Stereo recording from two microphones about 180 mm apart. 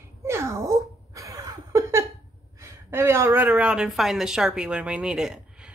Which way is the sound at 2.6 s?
15° right (ahead or behind).